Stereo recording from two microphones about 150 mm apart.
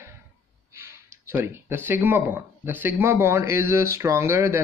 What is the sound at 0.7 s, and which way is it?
Speech, 15° right (ahead or behind).